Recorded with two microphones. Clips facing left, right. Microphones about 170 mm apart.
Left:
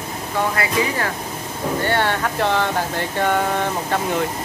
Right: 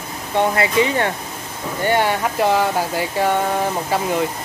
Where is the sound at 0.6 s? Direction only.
25° right (ahead or behind).